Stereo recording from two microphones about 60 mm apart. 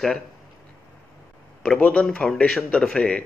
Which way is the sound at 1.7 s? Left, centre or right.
Left.